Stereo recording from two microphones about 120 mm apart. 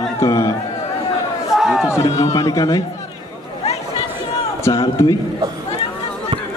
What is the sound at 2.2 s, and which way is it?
Speech, 30° left (ahead or behind).